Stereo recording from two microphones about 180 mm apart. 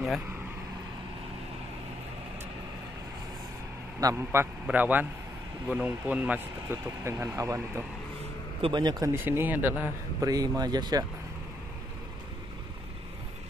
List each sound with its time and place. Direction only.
4.0 s speech: 15° right (ahead or behind)
8.5 s a man's voice: 25° right (ahead or behind)